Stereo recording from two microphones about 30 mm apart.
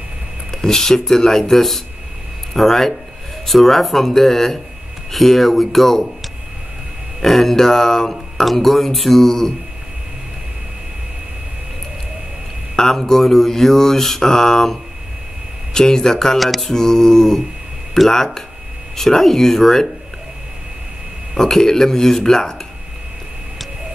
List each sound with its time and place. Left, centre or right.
0.6 s mantra: centre
1.5 s a sound: centre
2.6 s mantra: centre
7.2 s mantra: centre
8.1 s a sound: centre
9.2 s mantra: centre
13.0 s mantra: centre
15.7 s speech: left
16.3 s a sound: centre
16.7 s mantra: centre
21.4 s mantra: centre